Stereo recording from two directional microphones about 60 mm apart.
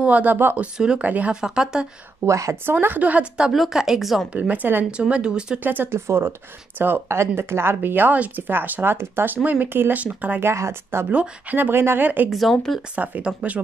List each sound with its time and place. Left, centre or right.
0.0 s speech: right
1.0 s a woman's voice: right
1.3 s speech: centre
2.2 s a woman's voice: right
2.6 s a woman's voice: right; by 3.5 s centre
3.5 s speech: centre
4.3 s a woman's voice: right
4.9 s speech: centre
5.6 s speech: right
5.9 s speech: right
9.9 s a woman's voice: right
10.4 s speech: right
12.3 s speech: centre
12.9 s a woman's voice: right